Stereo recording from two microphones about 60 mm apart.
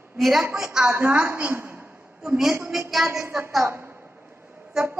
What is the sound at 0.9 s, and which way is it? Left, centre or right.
Speech, right.